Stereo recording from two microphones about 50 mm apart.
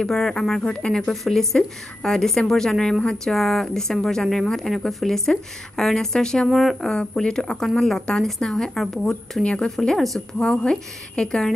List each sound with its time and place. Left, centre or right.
0.0 s speech: centre
3.3 s speech: centre
6.5 s speech: centre
6.9 s speech: centre
9.4 s speech: left
9.9 s speech: centre
10.4 s speech: centre